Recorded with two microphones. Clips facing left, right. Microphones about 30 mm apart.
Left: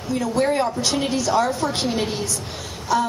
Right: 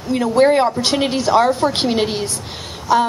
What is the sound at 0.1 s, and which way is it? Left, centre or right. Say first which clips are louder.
A woman's voice: right 7 dB; right.